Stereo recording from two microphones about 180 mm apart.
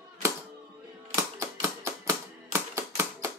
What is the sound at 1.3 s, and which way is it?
Typewriter, 15° right (ahead or behind).